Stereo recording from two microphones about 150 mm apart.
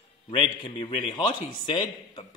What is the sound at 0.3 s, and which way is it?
A man's voice, 35° left (ahead or behind).